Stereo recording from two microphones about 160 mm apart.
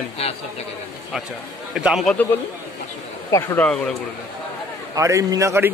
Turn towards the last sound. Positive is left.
turn(degrees=-15)  # may be behind; listen again after turning